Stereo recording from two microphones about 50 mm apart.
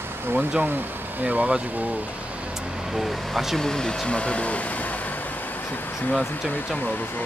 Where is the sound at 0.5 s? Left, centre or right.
Right.